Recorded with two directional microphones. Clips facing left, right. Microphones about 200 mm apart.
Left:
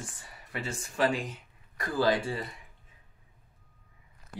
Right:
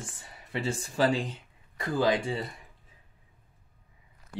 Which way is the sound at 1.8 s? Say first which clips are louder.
Right 1 dB; 20° right (ahead or behind).